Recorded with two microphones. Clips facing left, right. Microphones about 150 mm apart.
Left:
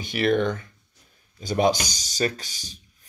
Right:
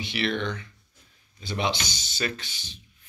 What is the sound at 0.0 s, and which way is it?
Speech, 45° left (ahead or behind).